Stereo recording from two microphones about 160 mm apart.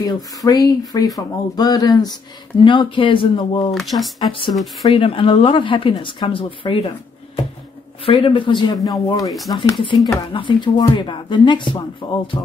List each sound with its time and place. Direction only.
0.0 s speech: 20° left (ahead or behind)
3.7 s speech: centre (ahead or behind)
4.2 s speech: 30° left (ahead or behind)
8.0 s speech: 35° left (ahead or behind)